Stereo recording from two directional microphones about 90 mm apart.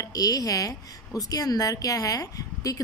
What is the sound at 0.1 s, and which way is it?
A woman's voice, 40° left (ahead or behind).